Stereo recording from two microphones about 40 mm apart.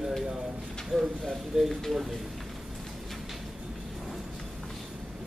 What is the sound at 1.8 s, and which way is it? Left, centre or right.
Speech, centre.